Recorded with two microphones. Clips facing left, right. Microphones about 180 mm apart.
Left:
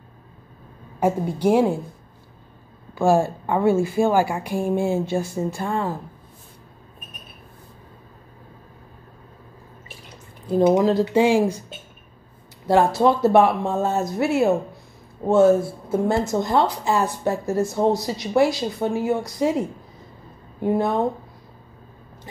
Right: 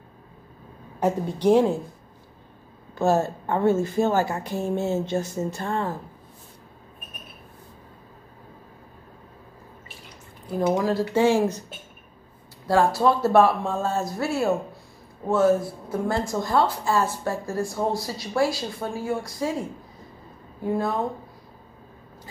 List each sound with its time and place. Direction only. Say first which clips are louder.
0.9 s a woman's voice: left 2 dB; 10° left (ahead or behind)
2.9 s a woman's voice: left 3 dB; 10° left (ahead or behind)
10.6 s a woman's voice: left 5 dB; 20° left (ahead or behind)
12.6 s speech: left 3 dB; 20° left (ahead or behind)
20.6 s speech: left 4 dB; 20° left (ahead or behind)